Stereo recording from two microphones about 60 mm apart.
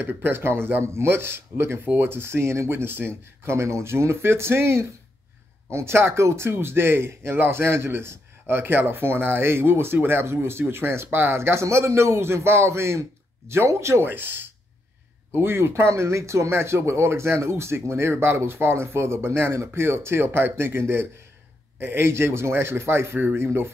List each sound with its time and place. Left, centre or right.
0.0 s speech: right
14.0 s speech: right